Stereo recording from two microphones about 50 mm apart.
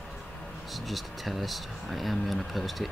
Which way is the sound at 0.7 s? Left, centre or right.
Centre.